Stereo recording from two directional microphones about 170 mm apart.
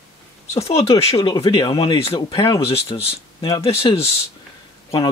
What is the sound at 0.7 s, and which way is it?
Speech, 35° left (ahead or behind).